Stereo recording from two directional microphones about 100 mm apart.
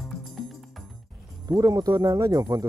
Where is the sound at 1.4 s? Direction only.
40° right (ahead or behind).